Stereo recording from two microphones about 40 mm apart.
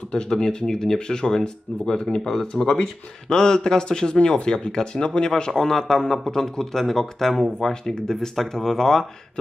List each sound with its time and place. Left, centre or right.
0.1 s speech: left